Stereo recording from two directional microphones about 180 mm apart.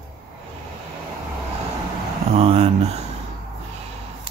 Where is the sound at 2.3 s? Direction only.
35° right (ahead or behind).